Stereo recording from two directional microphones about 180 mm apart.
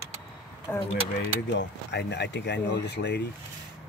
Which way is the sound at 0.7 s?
15° left (ahead or behind).